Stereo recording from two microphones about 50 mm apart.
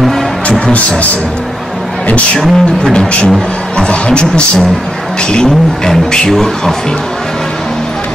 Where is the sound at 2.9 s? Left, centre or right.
Centre.